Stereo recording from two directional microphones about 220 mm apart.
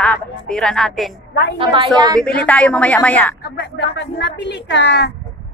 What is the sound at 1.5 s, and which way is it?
Speech, 25° right (ahead or behind).